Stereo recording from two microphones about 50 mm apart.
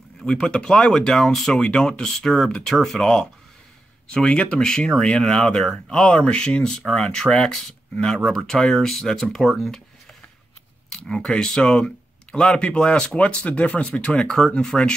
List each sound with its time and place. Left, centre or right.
0.2 s speech: centre
1.5 s speech: centre
10.9 s speech: centre